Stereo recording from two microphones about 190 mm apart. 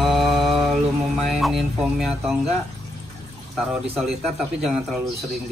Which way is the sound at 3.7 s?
Centre (ahead or behind).